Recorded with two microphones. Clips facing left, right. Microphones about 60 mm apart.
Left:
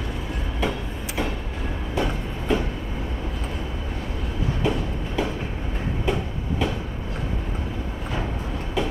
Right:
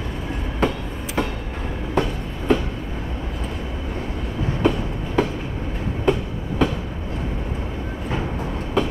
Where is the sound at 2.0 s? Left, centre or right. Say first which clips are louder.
Right 4 dB; right.